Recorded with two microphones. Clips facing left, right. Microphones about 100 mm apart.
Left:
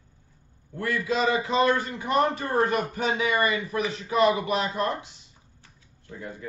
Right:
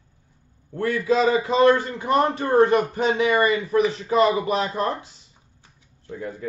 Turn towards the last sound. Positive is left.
turn(degrees=-45)  # may be behind; listen again after turning